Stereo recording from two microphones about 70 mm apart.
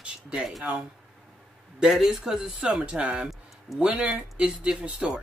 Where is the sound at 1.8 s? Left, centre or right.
Centre.